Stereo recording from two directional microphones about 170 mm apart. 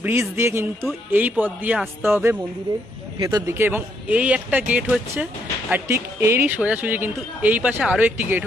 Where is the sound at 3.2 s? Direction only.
25° right (ahead or behind).